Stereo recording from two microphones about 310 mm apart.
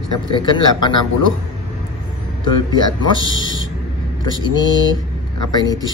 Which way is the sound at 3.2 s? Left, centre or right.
Left.